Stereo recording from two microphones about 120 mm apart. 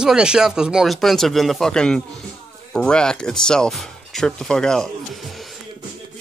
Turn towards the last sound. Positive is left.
turn(degrees=0)  # may be behind; listen again after turning